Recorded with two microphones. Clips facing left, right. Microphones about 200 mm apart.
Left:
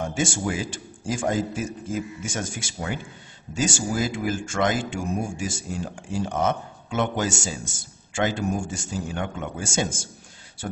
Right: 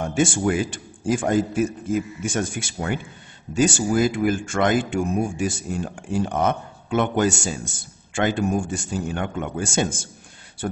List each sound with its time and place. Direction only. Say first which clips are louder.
0.0 s speech: right 5 dB; 60° right (ahead or behind)